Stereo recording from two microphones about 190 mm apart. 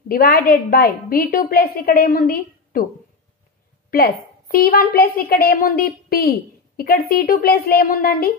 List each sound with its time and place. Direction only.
0.1 s a woman's voice: 50° left (ahead or behind)
3.9 s a woman's voice: 50° left (ahead or behind)